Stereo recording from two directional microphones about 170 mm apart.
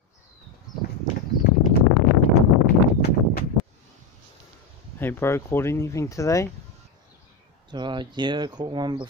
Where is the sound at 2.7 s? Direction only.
60° left (ahead or behind).